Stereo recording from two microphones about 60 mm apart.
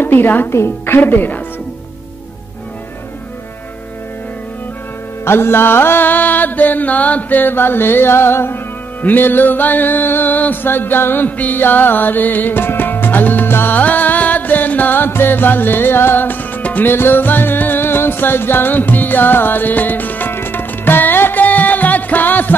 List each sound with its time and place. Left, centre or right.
0.0 s a woman's voice: left
0.6 s music: left
5.2 s music: left